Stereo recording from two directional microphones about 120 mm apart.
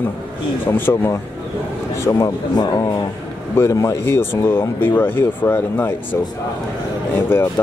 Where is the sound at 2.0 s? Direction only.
30° left (ahead or behind).